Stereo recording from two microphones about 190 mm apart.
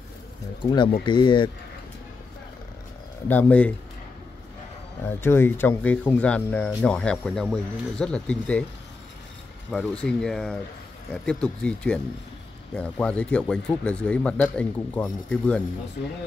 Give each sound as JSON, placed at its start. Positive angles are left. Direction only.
{"t": 0.6, "sound": "speech", "side_deg": 25}
{"t": 3.3, "sound": "speech", "side_deg": 10}
{"t": 5.0, "sound": "speech", "side_deg": 10}
{"t": 9.7, "sound": "speech", "side_deg": 0}